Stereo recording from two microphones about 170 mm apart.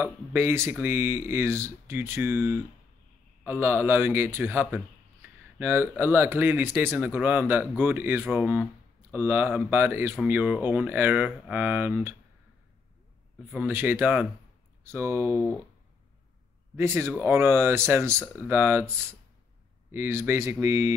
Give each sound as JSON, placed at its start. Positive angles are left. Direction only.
{"t": 0.0, "sound": "speech", "side_deg": -15}
{"t": 5.2, "sound": "a sound", "side_deg": -15}
{"t": 5.6, "sound": "speech", "side_deg": -10}
{"t": 13.5, "sound": "speech", "side_deg": -10}
{"t": 16.7, "sound": "speech", "side_deg": -15}